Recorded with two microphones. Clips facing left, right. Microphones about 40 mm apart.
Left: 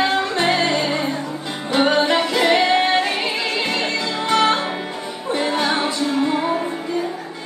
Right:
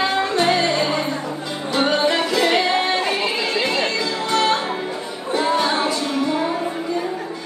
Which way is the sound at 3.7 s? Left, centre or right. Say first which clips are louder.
Right 1 dB; left.